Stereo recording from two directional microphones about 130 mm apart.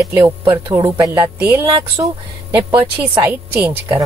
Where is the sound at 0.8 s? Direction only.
20° right (ahead or behind).